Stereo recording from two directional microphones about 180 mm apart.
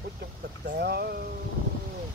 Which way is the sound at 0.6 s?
65° right (ahead or behind).